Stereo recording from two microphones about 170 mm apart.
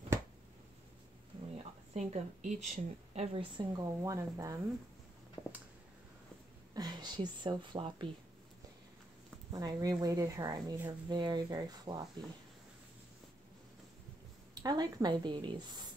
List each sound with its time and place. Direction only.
2.0 s a woman's voice: 45° right (ahead or behind)
3.5 s a woman's voice: 20° right (ahead or behind)
5.4 s a sound: 20° left (ahead or behind)
6.7 s speech: 25° right (ahead or behind)
9.5 s a woman's voice: 20° right (ahead or behind)
14.5 s a woman's voice: 25° right (ahead or behind)